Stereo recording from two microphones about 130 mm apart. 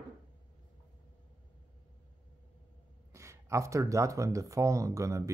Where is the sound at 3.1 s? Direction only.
20° right (ahead or behind).